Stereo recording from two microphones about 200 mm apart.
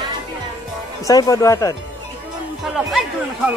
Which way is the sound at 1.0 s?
15° left (ahead or behind).